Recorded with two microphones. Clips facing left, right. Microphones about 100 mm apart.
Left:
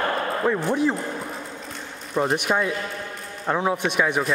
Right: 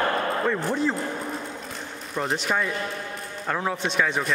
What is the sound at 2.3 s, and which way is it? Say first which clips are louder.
Speech: left 3 dB; 15° left (ahead or behind).